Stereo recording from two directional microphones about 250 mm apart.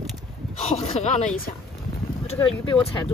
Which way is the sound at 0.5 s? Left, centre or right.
Left.